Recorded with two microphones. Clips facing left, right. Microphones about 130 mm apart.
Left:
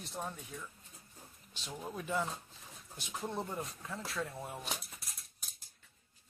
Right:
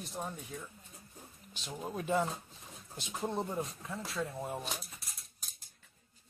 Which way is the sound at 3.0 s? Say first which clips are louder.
Right 3 dB; 25° right (ahead or behind).